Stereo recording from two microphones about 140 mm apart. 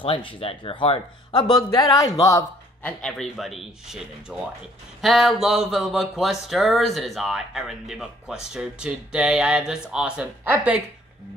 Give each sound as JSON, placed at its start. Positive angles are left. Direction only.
{"t": 0.0, "sound": "a man's voice", "side_deg": 35}
{"t": 2.8, "sound": "speech", "side_deg": 5}